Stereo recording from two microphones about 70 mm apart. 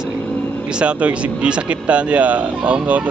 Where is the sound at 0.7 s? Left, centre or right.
Centre.